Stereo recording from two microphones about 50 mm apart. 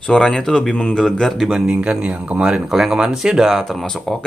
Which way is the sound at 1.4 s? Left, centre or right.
Centre.